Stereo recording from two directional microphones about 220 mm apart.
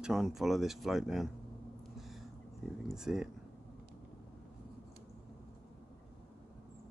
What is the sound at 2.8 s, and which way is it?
Speech, centre (ahead or behind).